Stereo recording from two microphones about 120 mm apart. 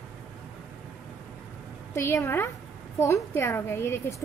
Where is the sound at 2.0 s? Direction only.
20° left (ahead or behind).